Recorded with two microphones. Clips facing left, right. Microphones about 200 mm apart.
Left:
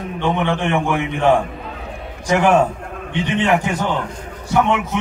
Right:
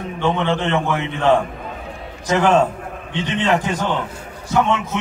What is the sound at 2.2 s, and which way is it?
A man's voice, 15° left (ahead or behind).